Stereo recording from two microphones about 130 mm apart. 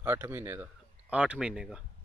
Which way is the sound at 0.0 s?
15° right (ahead or behind).